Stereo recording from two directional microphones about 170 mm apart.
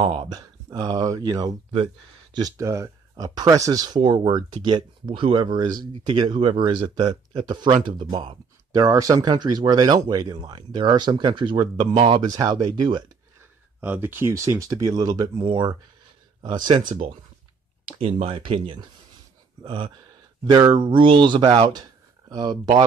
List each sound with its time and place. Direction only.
0.0 s speech: 30° right (ahead or behind)
13.7 s speech: 10° right (ahead or behind)